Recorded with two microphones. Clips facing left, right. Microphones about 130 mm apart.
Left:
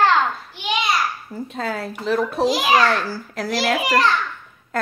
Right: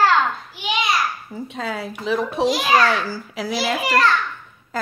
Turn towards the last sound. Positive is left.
turn(degrees=0)  # may be behind; listen again after turning